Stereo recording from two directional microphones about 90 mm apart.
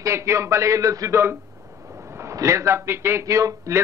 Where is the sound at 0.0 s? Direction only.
35° right (ahead or behind).